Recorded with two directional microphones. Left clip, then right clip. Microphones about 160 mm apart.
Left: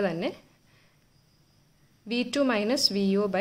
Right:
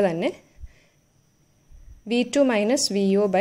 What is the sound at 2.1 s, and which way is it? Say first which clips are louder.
A woman's voice: right 6 dB; 25° right (ahead or behind).